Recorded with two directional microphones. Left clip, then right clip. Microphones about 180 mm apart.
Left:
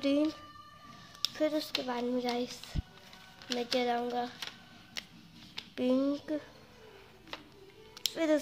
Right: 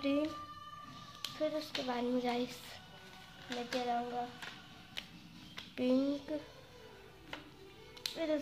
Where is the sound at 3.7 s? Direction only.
55° left (ahead or behind).